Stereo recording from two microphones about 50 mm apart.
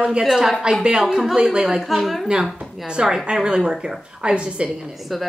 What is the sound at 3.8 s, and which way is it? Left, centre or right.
Speech, right.